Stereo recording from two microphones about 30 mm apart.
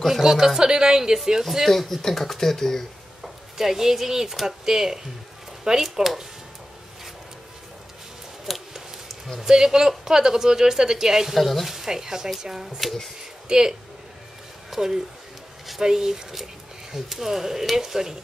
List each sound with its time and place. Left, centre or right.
0.2 s a woman's voice: centre
1.7 s speech: centre
3.2 s speech: centre
8.5 s speech: centre
9.5 s a woman's voice: centre
11.3 s speech: centre
11.7 s speech: centre
12.6 s speech: centre
13.5 s speech: right